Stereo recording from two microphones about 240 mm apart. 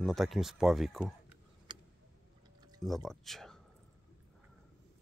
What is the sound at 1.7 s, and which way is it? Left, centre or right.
Tick, centre.